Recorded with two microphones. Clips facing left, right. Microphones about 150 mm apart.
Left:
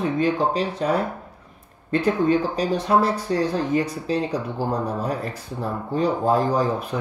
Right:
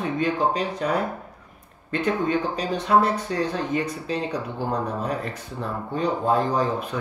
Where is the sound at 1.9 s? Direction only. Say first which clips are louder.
Left 4 dB; 35° left (ahead or behind).